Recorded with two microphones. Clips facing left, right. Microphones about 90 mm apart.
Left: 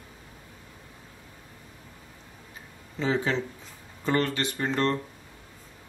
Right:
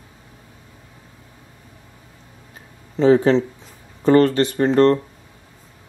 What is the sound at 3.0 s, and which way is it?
Speech, 40° right (ahead or behind).